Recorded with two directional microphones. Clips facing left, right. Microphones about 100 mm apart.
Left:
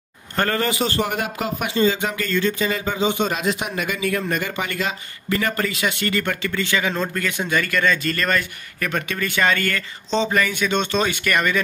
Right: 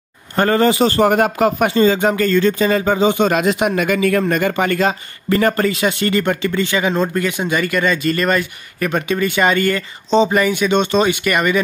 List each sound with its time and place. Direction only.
0.4 s speech: 25° right (ahead or behind)
0.8 s speech: 45° right (ahead or behind); by 11.6 s 15° right (ahead or behind)